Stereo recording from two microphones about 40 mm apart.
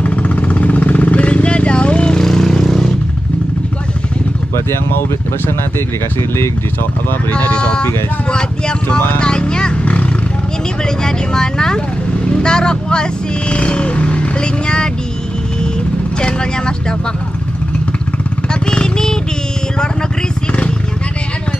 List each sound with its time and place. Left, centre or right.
0.0 s vehicle: left; by 2.9 s centre
7.3 s speech: left
9.8 s roaring cats: left
10.9 s speech: centre
16.2 s speech: left
18.5 s vehicle: left